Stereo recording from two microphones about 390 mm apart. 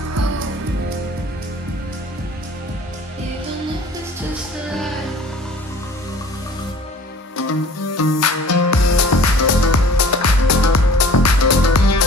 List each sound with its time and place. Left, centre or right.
7.9 s music: left